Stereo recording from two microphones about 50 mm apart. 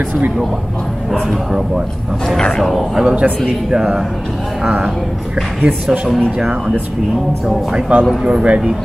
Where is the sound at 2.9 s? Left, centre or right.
Centre.